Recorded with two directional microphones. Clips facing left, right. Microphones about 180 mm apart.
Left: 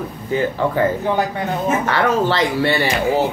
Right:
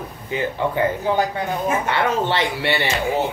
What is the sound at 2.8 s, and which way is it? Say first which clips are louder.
Speech: left 4 dB; 15° left (ahead or behind).